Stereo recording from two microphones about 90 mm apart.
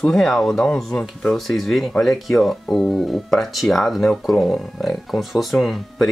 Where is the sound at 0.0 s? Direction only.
5° left (ahead or behind).